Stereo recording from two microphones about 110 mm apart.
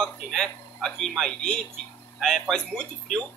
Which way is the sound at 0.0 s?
5° left (ahead or behind).